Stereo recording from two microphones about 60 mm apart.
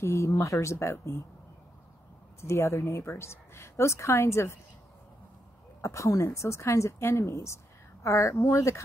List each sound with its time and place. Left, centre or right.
0.0 s speech: left
2.4 s a woman's voice: left
5.8 s a woman's voice: left